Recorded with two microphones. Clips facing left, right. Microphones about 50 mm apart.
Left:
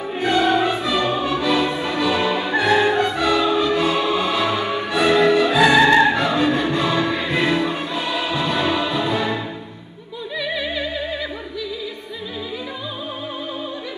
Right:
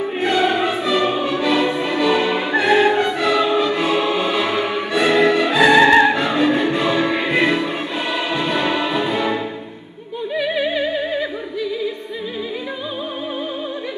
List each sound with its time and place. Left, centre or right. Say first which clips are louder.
0.2 s music: left 1 dB; centre
10.3 s opera: right 5 dB; right